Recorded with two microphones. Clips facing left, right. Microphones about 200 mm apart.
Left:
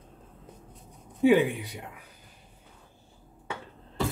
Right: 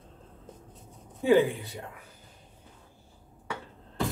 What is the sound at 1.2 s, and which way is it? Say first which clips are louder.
Speech: left 1 dB; 15° left (ahead or behind).